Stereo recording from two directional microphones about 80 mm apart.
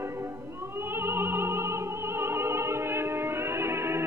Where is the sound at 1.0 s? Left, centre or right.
Right.